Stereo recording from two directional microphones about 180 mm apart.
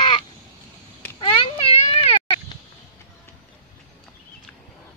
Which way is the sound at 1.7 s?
35° left (ahead or behind).